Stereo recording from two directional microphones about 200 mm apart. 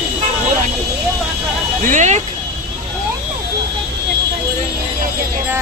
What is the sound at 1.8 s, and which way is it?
Speech, 35° right (ahead or behind).